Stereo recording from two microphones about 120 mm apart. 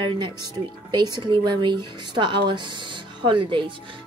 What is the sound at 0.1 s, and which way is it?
A woman's voice, 40° right (ahead or behind).